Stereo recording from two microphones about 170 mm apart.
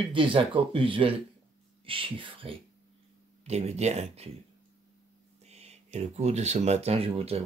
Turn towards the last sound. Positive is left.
turn(degrees=-35)  # may be behind; listen again after turning